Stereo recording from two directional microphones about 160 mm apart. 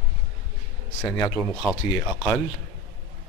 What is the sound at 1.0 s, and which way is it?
Speech, 20° left (ahead or behind).